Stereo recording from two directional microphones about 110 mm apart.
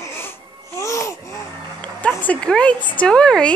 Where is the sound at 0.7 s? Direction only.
30° left (ahead or behind).